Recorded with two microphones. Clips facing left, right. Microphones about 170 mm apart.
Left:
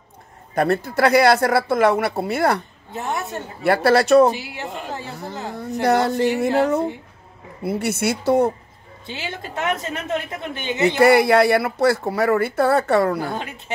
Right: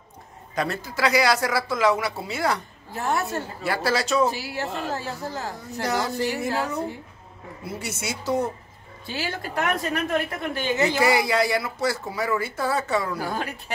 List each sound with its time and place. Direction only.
0.6 s speech: 55° left (ahead or behind)
2.9 s a woman's voice: 20° left (ahead or behind)
3.6 s speech: 60° left (ahead or behind)
4.3 s a woman's voice: 20° left (ahead or behind)
5.8 s speech: 60° left (ahead or behind)
9.0 s a woman's voice: 20° left (ahead or behind)
11.0 s speech: 60° left (ahead or behind)
13.4 s a woman's voice: 20° left (ahead or behind)